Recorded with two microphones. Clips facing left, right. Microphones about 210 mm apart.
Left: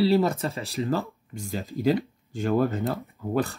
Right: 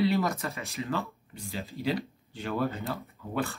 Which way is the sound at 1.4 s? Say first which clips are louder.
Left 6 dB; 45° left (ahead or behind).